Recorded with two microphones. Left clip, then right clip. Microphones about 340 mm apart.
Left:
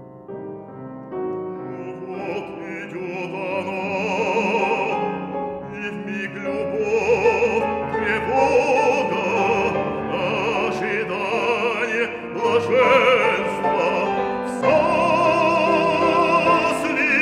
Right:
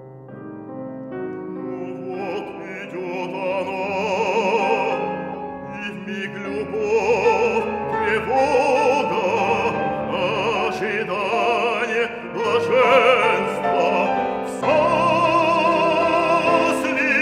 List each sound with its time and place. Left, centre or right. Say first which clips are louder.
3.2 s music: right 2 dB; right
6.4 s music: left 2 dB; right
16.6 s opera: even; right